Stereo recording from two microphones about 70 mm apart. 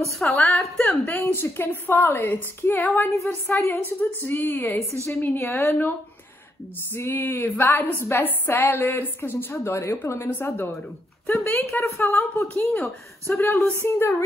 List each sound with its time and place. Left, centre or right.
0.2 s a woman's voice: centre
0.6 s speech: centre
1.0 s a woman's voice: left
12.7 s speech: centre
13.4 s a woman's voice: left